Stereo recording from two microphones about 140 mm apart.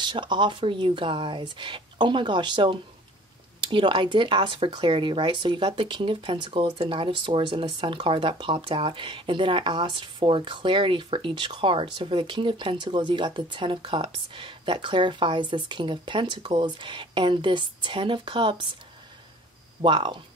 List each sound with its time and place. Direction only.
0.0 s speech: 35° right (ahead or behind)
19.8 s speech: 35° right (ahead or behind)